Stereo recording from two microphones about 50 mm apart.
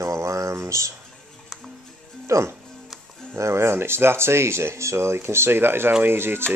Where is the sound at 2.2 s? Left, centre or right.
Right.